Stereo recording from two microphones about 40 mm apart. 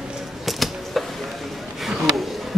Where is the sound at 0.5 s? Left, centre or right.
Centre.